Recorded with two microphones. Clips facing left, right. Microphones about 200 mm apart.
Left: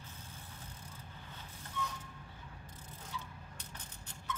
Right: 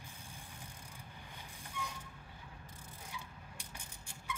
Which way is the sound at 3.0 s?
10° right (ahead or behind).